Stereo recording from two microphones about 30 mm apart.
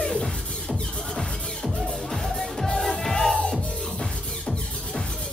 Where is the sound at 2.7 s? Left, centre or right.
Left.